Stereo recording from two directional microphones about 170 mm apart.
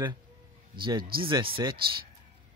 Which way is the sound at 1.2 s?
30° right (ahead or behind).